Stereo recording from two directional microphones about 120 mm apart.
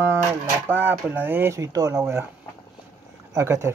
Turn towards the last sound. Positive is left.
turn(degrees=-25)  # may be behind; listen again after turning